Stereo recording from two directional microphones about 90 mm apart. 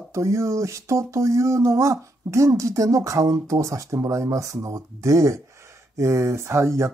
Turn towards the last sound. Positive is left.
turn(degrees=-35)  # may be behind; listen again after turning